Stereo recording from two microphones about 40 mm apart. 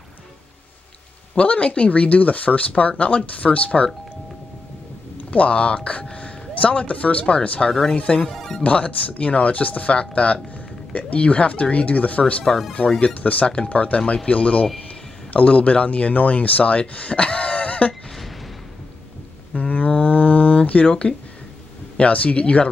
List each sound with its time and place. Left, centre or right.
1.3 s speech: left
5.3 s speech: left
19.5 s a sound: left
20.8 s speech: left
21.9 s speech: left